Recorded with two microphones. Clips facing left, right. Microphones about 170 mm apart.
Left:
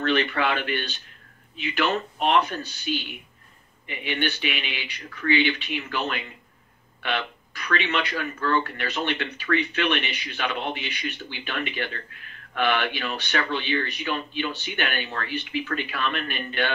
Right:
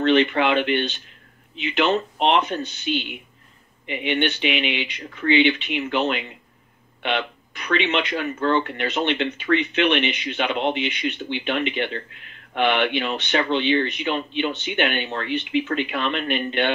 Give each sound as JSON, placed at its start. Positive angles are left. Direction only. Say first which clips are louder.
{"t": 0.0, "sound": "speech", "louder": "right 6 dB", "side_deg": -20}
{"t": 2.8, "sound": "speech", "louder": "right 2 dB", "side_deg": -65}
{"t": 3.8, "sound": "speech", "louder": "right 5 dB", "side_deg": -20}